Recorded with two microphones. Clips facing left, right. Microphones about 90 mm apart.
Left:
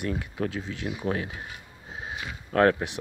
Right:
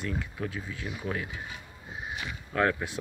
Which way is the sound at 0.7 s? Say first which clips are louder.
Left 5 dB; 55° left (ahead or behind).